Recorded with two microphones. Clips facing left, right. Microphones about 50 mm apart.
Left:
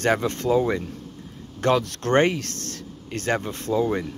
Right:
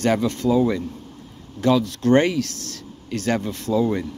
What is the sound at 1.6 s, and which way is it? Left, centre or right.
Speech, left.